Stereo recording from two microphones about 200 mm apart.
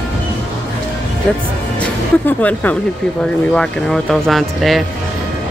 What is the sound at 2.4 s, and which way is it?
Speech, 5° left (ahead or behind).